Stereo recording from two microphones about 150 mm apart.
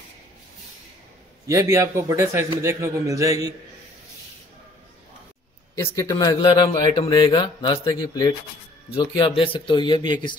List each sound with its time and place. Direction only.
1.5 s a man's voice: 20° right (ahead or behind)
5.9 s speech: 20° left (ahead or behind)